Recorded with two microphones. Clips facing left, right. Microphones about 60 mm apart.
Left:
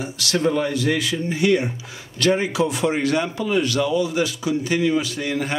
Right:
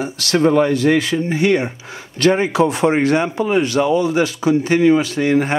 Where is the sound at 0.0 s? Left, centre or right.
Right.